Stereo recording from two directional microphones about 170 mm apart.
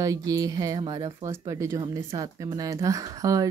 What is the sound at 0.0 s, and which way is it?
Speech, 20° right (ahead or behind).